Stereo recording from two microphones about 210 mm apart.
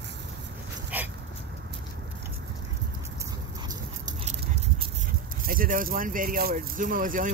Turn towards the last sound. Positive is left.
turn(degrees=-40)  # may be behind; listen again after turning